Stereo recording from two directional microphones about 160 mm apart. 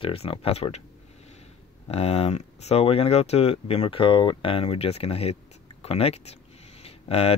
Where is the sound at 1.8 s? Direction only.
40° left (ahead or behind).